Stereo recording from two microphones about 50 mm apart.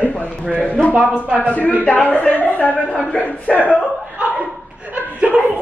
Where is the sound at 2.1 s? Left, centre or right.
Left.